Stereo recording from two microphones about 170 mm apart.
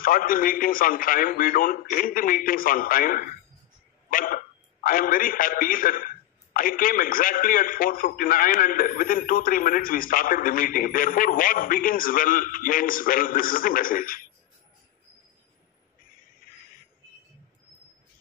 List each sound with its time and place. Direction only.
0.0 s a man's voice: 55° left (ahead or behind)
4.1 s hiccup: 55° left (ahead or behind)
4.8 s a man's voice: 55° left (ahead or behind)